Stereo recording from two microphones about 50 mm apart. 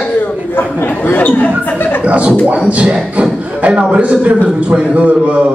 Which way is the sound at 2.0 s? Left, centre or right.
Right.